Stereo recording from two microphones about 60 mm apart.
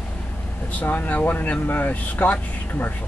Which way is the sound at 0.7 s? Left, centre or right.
Left.